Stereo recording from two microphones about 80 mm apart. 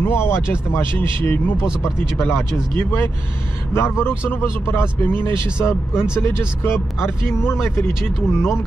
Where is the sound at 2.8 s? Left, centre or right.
Left.